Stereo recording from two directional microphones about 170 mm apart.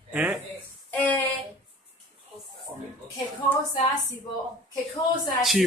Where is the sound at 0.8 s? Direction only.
10° left (ahead or behind).